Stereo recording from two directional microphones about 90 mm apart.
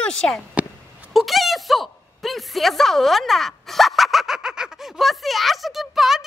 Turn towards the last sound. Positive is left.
turn(degrees=-5)  # may be behind; listen again after turning